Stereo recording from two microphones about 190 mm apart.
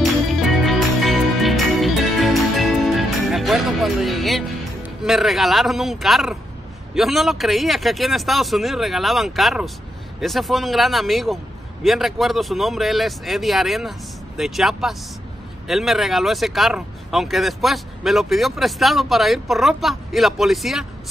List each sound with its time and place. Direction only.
0.0 s music: centre (ahead or behind)
5.0 s speech: centre (ahead or behind)